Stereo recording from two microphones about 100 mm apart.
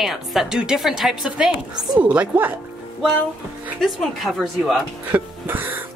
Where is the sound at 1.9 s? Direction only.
15° right (ahead or behind).